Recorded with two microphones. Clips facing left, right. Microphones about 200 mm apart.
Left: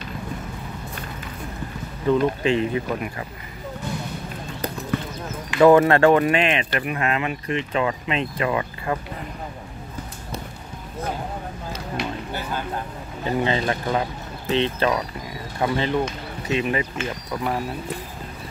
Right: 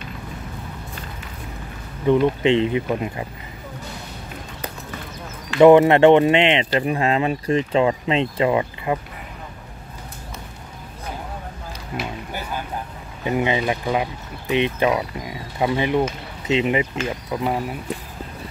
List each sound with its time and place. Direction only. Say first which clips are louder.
2.0 s speech: right 3 dB; 25° right (ahead or behind)
5.6 s speech: right 3 dB; 20° right (ahead or behind)
13.3 s speech: right 2 dB; 15° right (ahead or behind)